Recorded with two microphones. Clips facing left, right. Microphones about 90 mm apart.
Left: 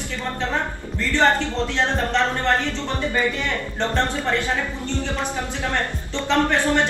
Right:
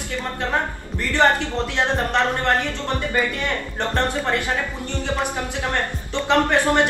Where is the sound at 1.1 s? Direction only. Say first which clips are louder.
Right 1 dB; 15° right (ahead or behind).